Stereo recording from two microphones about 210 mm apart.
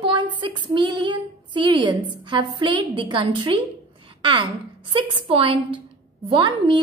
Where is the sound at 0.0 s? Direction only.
20° right (ahead or behind).